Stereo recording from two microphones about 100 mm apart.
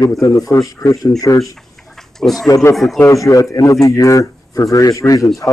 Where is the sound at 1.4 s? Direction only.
5° left (ahead or behind).